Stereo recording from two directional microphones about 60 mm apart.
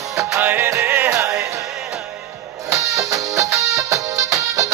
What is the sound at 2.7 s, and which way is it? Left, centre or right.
Music, right.